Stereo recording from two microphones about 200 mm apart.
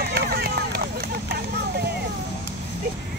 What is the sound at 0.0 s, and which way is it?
Run, 50° right (ahead or behind).